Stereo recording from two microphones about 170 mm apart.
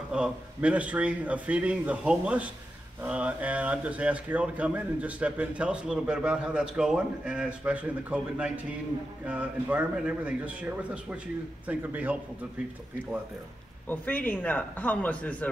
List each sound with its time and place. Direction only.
0.1 s speech: 5° right (ahead or behind)
13.8 s a man's voice: 10° left (ahead or behind)